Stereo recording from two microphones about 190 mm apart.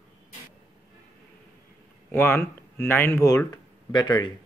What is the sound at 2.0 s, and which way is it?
Speech, 10° left (ahead or behind).